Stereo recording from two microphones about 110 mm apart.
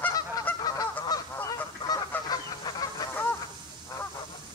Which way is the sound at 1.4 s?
35° left (ahead or behind).